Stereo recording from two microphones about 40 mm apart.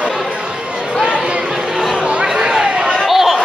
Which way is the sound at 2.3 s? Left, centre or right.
Centre.